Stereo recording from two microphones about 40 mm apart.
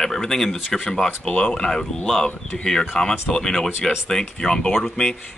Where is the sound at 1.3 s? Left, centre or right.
Left.